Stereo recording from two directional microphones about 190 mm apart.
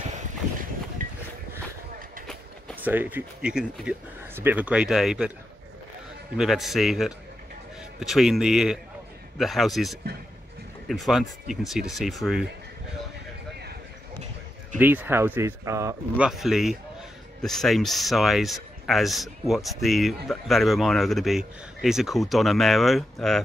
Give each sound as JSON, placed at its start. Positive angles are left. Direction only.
{"t": 1.0, "sound": "a sound", "side_deg": -45}
{"t": 2.8, "sound": "speech", "side_deg": -10}
{"t": 6.3, "sound": "speech", "side_deg": 0}
{"t": 14.8, "sound": "speech", "side_deg": -10}
{"t": 16.3, "sound": "speech", "side_deg": 0}